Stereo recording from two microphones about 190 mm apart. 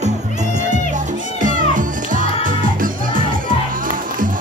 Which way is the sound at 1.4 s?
45° right (ahead or behind).